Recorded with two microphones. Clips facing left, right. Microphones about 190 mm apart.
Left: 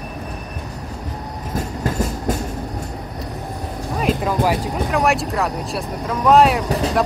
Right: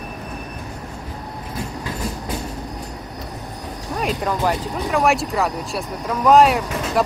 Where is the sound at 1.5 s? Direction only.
45° left (ahead or behind).